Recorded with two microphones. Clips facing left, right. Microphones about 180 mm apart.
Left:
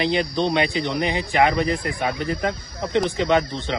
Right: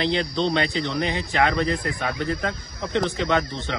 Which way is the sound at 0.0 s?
15° left (ahead or behind).